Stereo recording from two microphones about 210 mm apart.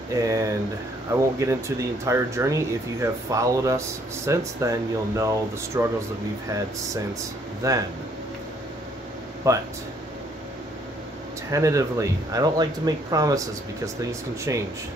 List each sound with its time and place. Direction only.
0.1 s speech: 15° right (ahead or behind)
7.6 s speech: 15° right (ahead or behind)
9.5 s speech: 15° right (ahead or behind)
11.5 s speech: 15° right (ahead or behind)
14.5 s speech: 15° right (ahead or behind)